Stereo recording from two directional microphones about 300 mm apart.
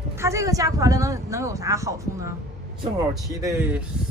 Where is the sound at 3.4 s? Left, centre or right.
Centre.